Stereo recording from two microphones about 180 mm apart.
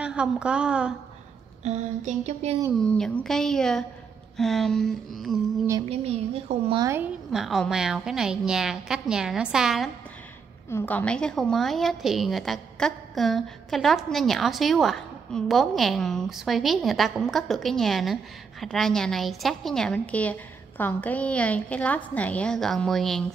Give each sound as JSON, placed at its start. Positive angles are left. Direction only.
{"t": 0.0, "sound": "a woman's voice", "side_deg": -5}
{"t": 1.6, "sound": "a woman's voice", "side_deg": -40}
{"t": 2.8, "sound": "a woman's voice", "side_deg": 5}
{"t": 5.9, "sound": "a woman's voice", "side_deg": -35}
{"t": 6.8, "sound": "a woman's voice", "side_deg": -15}
{"t": 7.2, "sound": "a woman's voice", "side_deg": 0}
{"t": 10.7, "sound": "a woman's voice", "side_deg": 10}